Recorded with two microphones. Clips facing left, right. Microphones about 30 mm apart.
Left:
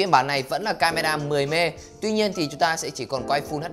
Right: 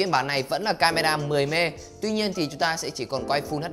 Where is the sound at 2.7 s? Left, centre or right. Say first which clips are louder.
Left 1 dB; right.